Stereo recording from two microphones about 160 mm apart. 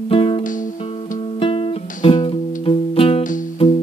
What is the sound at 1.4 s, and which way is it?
Music, 35° left (ahead or behind).